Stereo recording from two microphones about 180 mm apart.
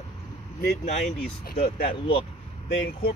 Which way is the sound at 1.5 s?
55° left (ahead or behind).